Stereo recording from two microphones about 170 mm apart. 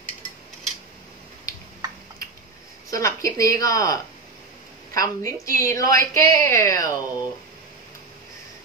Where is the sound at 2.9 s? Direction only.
20° left (ahead or behind).